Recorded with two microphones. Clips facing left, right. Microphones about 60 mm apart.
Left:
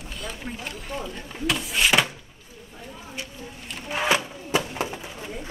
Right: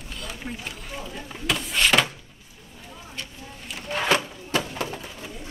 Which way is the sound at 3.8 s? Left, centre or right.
Centre.